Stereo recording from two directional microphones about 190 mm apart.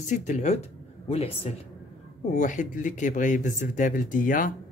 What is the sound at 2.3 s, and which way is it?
Speech, 40° left (ahead or behind).